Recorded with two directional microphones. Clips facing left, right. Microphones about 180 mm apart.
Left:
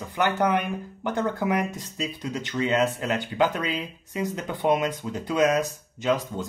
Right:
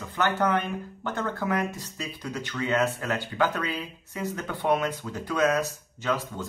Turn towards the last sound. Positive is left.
turn(degrees=20)  # may be behind; listen again after turning